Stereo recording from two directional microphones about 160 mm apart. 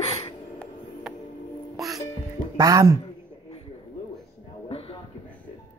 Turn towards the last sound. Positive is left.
turn(degrees=40)  # may be behind; listen again after turning